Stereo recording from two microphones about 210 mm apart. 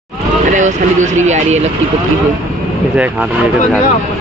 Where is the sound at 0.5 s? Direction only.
35° right (ahead or behind).